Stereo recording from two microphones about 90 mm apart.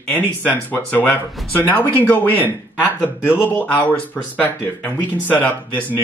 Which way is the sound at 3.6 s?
15° left (ahead or behind).